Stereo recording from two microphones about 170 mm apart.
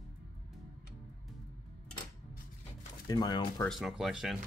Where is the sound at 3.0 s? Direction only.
25° left (ahead or behind).